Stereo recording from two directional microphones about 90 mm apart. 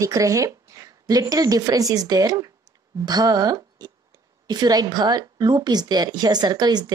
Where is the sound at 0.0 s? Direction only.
35° right (ahead or behind).